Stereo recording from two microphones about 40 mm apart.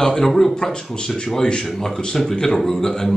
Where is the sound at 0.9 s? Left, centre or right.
Left.